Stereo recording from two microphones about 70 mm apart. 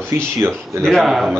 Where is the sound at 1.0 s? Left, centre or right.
Centre.